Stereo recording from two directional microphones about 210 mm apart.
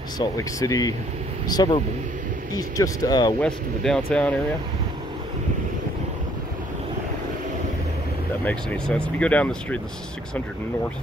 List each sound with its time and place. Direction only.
0.2 s speech: 15° left (ahead or behind)
3.3 s speech: 5° left (ahead or behind)
8.5 s speech: 5° left (ahead or behind)